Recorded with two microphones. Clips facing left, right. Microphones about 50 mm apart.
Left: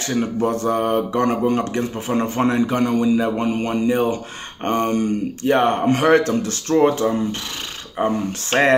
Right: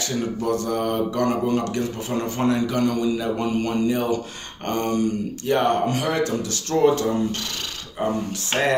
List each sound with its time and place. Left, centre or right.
0.1 s speech: left